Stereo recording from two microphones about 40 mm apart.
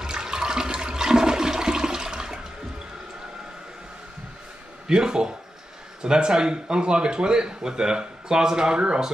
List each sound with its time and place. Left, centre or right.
0.0 s toilet flush: centre
4.8 s speech: centre